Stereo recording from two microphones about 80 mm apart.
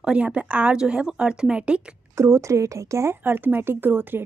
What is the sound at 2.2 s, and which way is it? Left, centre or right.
Speech, right.